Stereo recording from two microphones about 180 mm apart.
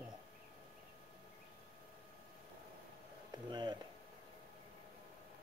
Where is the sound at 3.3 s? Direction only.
25° right (ahead or behind).